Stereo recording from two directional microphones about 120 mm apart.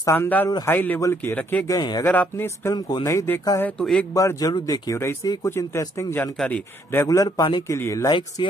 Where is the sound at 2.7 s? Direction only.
35° left (ahead or behind).